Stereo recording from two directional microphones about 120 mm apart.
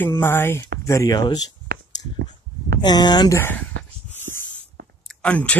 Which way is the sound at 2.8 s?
35° left (ahead or behind).